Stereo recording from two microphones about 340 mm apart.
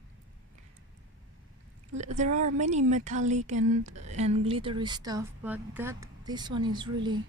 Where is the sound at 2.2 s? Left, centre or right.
Right.